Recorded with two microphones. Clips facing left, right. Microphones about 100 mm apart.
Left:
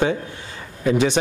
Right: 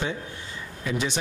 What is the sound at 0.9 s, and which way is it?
Speech, 75° left (ahead or behind).